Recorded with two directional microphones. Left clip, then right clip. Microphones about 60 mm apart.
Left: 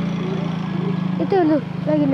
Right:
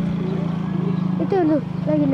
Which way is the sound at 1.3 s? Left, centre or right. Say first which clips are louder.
Left 2 dB; centre.